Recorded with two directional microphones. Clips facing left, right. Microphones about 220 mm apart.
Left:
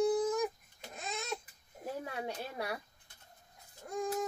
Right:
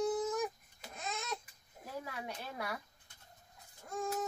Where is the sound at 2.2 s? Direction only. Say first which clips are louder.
Left 4 dB; 30° left (ahead or behind).